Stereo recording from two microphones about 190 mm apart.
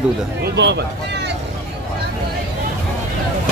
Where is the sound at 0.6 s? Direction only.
65° right (ahead or behind).